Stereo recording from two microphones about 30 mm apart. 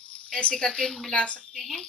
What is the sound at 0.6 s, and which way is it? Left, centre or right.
Speech, left.